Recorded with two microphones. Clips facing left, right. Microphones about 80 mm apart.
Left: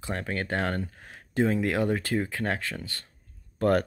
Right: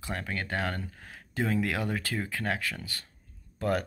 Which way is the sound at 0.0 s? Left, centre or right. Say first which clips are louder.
Left 3 dB; left.